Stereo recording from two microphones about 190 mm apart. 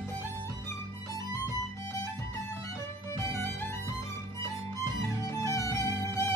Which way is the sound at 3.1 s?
10° left (ahead or behind).